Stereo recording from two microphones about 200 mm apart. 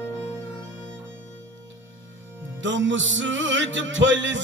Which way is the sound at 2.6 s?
65° right (ahead or behind).